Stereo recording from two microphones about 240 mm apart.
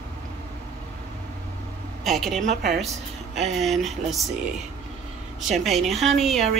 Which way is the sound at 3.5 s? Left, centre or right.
Centre.